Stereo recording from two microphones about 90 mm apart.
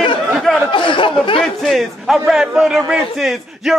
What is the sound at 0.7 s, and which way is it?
Speech, 65° left (ahead or behind).